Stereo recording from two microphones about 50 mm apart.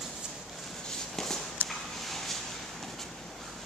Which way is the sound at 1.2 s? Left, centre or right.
Centre.